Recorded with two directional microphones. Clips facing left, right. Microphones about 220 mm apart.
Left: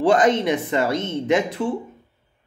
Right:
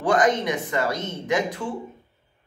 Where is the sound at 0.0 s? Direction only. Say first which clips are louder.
Left 4 dB; 25° left (ahead or behind).